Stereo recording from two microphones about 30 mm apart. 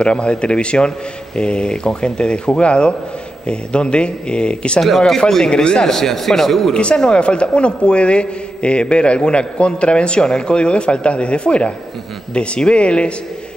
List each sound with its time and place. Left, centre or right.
0.0 s a man's voice: left
4.8 s a man's voice: centre
5.5 s a man's voice: left
5.9 s a man's voice: centre
6.7 s a man's voice: left